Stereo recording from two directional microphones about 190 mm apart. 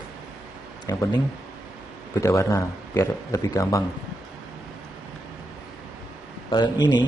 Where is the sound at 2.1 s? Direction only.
15° left (ahead or behind).